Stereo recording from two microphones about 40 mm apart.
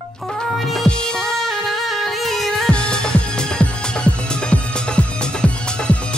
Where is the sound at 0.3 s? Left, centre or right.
Centre.